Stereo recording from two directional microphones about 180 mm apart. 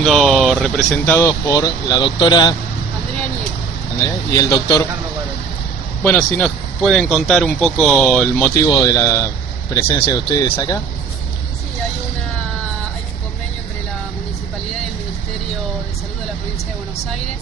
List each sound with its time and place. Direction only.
0.0 s a sound: centre (ahead or behind)
1.0 s speech: 15° left (ahead or behind)
4.0 s speech: 20° left (ahead or behind)
6.0 s speech: 10° left (ahead or behind)